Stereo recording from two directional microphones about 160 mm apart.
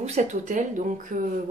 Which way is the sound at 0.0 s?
45° right (ahead or behind).